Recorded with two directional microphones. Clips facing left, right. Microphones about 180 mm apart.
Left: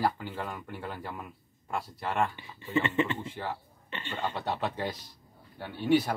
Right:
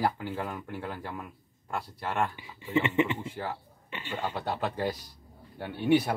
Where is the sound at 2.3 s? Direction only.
10° right (ahead or behind).